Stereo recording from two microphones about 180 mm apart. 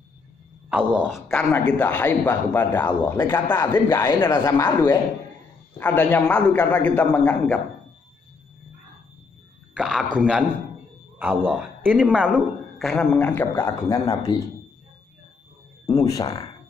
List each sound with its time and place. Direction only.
0.7 s speech: 5° right (ahead or behind)
1.3 s a man's voice: 5° left (ahead or behind)
9.8 s speech: 5° right (ahead or behind)
11.5 s speech: 10° right (ahead or behind); by 14.3 s 15° left (ahead or behind)
15.9 s speech: 20° left (ahead or behind)